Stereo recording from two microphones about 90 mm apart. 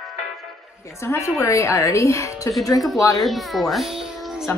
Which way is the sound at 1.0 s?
30° left (ahead or behind).